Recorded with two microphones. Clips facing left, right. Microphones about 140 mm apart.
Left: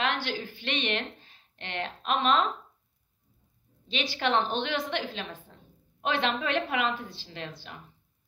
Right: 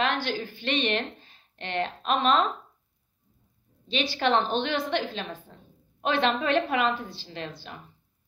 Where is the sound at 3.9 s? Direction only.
20° left (ahead or behind).